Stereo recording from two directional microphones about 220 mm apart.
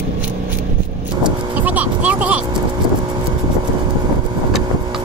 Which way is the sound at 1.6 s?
5° right (ahead or behind).